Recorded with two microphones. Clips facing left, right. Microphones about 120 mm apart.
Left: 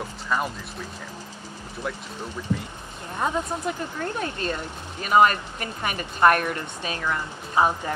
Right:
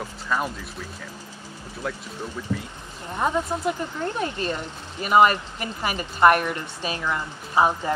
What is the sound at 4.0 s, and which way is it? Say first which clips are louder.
Speech: right 2 dB; 20° right (ahead or behind).